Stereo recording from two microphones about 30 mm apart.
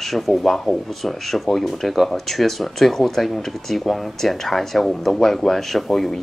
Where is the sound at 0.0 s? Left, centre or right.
Centre.